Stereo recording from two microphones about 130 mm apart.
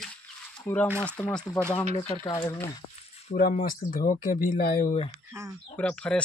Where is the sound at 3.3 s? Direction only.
80° left.